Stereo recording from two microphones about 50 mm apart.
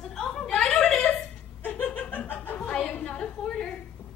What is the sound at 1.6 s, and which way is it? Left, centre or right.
Chuckle, left.